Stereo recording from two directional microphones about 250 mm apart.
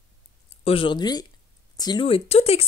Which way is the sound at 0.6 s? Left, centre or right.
Left.